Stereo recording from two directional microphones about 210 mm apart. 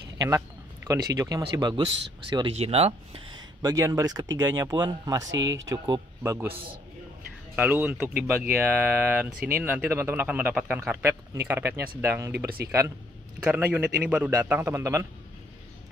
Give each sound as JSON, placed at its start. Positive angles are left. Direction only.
{"t": 0.8, "sound": "a man's voice", "side_deg": -15}
{"t": 3.6, "sound": "a man's voice", "side_deg": -15}
{"t": 7.5, "sound": "a man's voice", "side_deg": -10}